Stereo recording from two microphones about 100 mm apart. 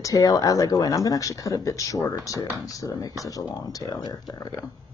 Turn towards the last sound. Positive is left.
turn(degrees=40)  # may be behind; listen again after turning